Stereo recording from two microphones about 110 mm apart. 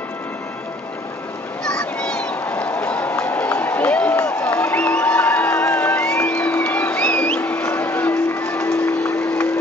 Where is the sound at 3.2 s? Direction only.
20° left (ahead or behind).